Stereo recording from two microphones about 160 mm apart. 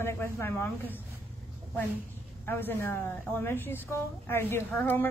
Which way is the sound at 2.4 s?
15° left (ahead or behind).